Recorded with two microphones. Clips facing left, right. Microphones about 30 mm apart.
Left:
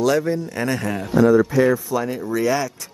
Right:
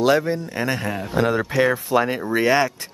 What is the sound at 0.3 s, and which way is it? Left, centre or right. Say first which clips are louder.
Speech: left 1 dB; right.